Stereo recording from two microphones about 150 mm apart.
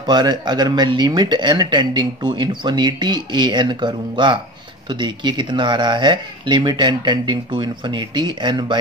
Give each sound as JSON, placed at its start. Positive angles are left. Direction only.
{"t": 0.0, "sound": "speech", "side_deg": -30}